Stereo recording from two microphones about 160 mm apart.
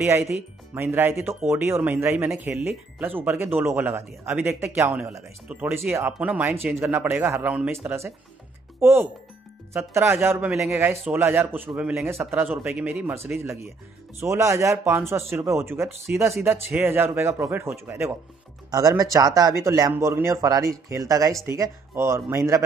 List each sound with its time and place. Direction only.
0.2 s a man's voice: 5° right (ahead or behind)
14.2 s a man's voice: 20° right (ahead or behind)